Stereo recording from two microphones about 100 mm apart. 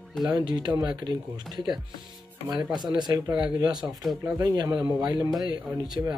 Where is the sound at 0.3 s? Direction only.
50° right (ahead or behind).